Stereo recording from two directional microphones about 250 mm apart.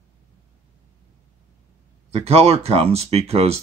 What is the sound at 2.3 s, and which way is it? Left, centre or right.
Speech, right.